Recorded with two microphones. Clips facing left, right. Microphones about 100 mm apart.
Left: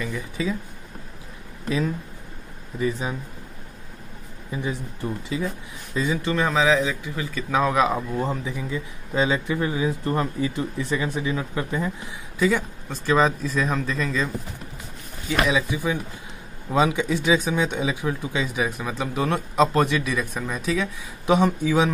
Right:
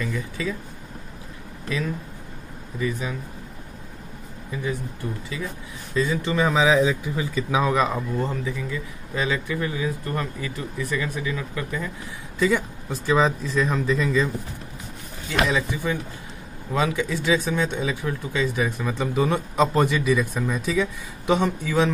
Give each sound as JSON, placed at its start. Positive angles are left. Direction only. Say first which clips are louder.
{"t": 0.0, "sound": "speech", "louder": "even", "side_deg": 15}
{"t": 2.8, "sound": "speech", "louder": "left 2 dB", "side_deg": 30}
{"t": 6.2, "sound": "speech", "louder": "even", "side_deg": -5}
{"t": 6.5, "sound": "speech", "louder": "right 2 dB", "side_deg": -15}
{"t": 7.5, "sound": "a man's voice", "louder": "left 2 dB", "side_deg": 0}
{"t": 12.4, "sound": "speech", "louder": "even", "side_deg": 0}
{"t": 15.2, "sound": "speech", "louder": "left 1 dB", "side_deg": 10}